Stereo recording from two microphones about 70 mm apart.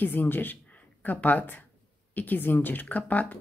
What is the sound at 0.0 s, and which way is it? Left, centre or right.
A woman's voice, left.